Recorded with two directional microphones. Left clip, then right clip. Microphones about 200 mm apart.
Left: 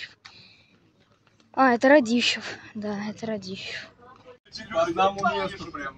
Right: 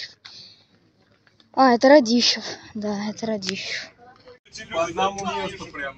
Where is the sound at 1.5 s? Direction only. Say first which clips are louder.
Right 4 dB; 5° right (ahead or behind).